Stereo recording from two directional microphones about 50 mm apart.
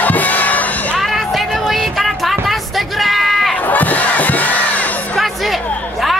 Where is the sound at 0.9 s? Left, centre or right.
Centre.